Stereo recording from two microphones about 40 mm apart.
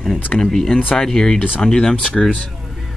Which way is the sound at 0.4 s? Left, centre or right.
Centre.